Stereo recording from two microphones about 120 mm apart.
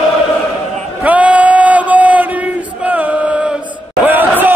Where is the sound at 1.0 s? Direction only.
10° right (ahead or behind).